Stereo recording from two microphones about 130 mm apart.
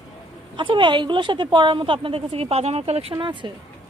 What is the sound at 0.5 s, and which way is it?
Speech, 40° right (ahead or behind).